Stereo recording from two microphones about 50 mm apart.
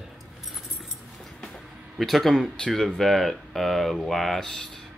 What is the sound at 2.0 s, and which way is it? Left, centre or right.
Speech, centre.